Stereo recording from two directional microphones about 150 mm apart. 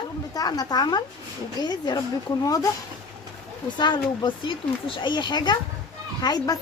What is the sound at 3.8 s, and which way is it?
A woman's voice, 30° left (ahead or behind).